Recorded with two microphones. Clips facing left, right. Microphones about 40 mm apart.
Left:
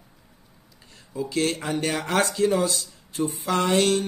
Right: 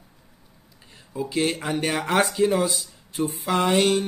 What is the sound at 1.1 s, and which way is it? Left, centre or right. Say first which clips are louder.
Speech: right 1 dB; centre.